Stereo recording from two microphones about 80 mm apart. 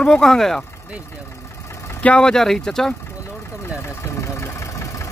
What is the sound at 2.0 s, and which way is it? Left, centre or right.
Speech, centre.